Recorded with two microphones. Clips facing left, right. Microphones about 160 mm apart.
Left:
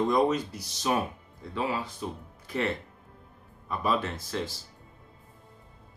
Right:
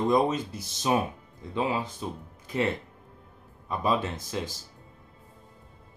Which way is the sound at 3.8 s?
20° right (ahead or behind).